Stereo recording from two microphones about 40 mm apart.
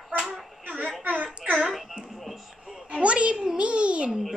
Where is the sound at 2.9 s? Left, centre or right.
Right.